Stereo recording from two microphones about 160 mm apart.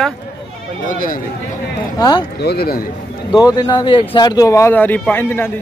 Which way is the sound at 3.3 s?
25° left (ahead or behind).